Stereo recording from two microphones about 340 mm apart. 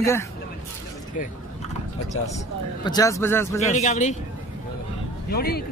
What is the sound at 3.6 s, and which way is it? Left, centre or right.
Speech, centre.